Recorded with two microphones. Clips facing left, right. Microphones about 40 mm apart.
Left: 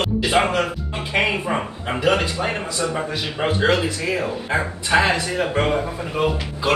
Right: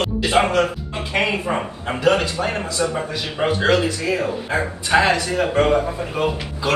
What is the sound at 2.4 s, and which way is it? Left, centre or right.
Speech, centre.